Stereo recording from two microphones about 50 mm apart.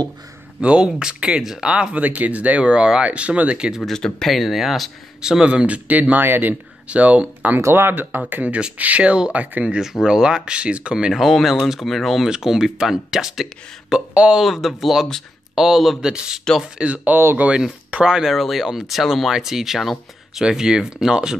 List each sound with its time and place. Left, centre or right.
0.6 s speech: centre
2.0 s speech: right
3.8 s speech: centre
4.4 s speech: centre
5.2 s speech: centre; by 6.5 s right
6.9 s speech: right
7.5 s speech: right
9.8 s speech: centre
11.1 s speech: centre
16.0 s speech: centre
17.9 s speech: centre
18.3 s speech: centre
20.4 s speech: centre